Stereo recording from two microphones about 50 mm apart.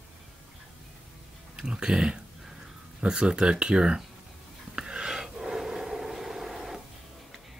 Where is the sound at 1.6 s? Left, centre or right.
Centre.